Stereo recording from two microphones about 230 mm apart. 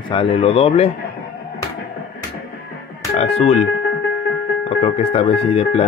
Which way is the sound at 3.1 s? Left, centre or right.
Left.